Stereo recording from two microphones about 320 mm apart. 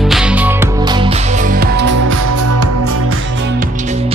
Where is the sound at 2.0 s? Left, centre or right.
Right.